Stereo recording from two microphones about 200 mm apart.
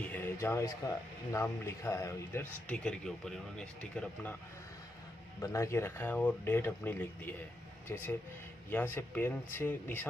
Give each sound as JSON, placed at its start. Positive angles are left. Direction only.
{"t": 0.0, "sound": "speech", "side_deg": 10}
{"t": 5.4, "sound": "speech", "side_deg": 15}